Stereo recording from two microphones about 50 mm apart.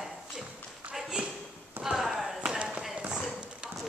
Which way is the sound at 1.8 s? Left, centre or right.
Centre.